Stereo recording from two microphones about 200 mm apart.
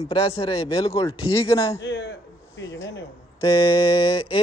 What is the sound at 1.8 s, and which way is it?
Speech, 60° left (ahead or behind).